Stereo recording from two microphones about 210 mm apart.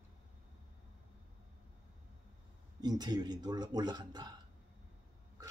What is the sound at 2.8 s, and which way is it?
Speech, 20° right (ahead or behind).